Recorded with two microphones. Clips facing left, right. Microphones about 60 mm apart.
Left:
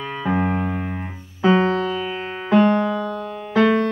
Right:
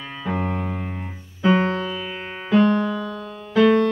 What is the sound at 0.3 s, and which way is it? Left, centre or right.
Piano, left.